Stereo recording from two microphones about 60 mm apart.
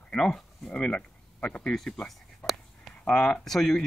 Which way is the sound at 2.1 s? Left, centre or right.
Centre.